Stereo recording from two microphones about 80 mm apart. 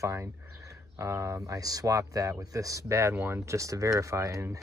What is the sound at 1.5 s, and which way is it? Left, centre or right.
Speech, right.